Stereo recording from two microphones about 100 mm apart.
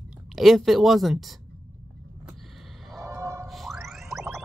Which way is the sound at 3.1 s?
30° right (ahead or behind).